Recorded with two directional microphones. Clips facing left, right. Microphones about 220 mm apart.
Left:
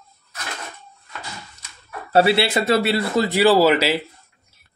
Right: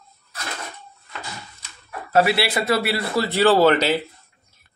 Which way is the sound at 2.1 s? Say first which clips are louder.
Left 2 dB; 25° left (ahead or behind).